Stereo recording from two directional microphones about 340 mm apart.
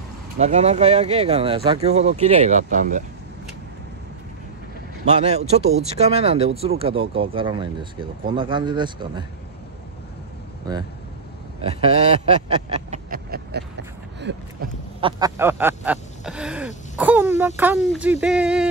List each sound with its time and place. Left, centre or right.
0.4 s speech: centre
5.0 s speech: centre
10.7 s speech: centre; by 13.7 s right
14.3 s a sound: right
15.0 s a sound: centre
17.6 s speech: centre